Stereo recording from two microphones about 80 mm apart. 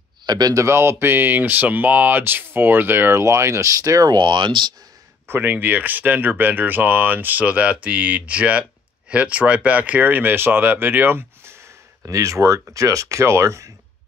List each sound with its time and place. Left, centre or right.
0.3 s speech: right
0.6 s speech: right
4.1 s speech: right
5.3 s speech: right
12.1 s speech: right